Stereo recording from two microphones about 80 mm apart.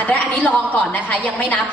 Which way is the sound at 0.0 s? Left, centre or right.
Centre.